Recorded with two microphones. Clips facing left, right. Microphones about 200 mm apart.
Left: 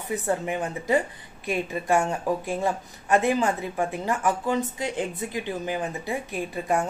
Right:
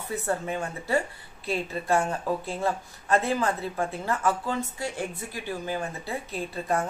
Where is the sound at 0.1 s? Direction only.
15° left (ahead or behind).